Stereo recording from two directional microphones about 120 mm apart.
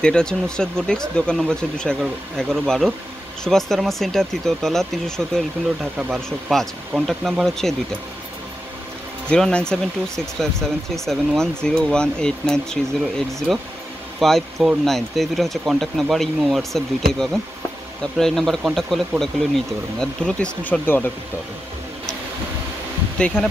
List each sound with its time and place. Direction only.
0.0 s speech: 5° left (ahead or behind)
6.5 s speech: 5° left (ahead or behind)
9.3 s speech: 10° left (ahead or behind)
23.1 s speech: 10° left (ahead or behind)